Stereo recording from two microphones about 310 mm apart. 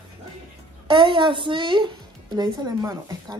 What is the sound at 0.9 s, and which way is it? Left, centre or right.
Speech, centre.